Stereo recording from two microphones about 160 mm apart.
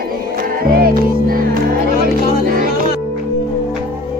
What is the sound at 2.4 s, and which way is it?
Music, 60° right (ahead or behind).